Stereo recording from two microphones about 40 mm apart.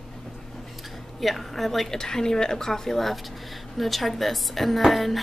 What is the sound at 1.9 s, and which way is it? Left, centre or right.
A woman's voice, centre.